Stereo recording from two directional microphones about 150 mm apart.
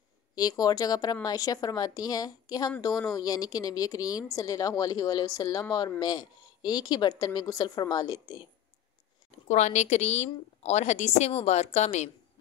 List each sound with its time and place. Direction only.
0.4 s speech: 25° left (ahead or behind)
9.5 s a woman's voice: 50° left (ahead or behind)